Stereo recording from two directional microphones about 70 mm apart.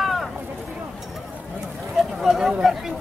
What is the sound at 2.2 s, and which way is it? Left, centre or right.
Speech, centre.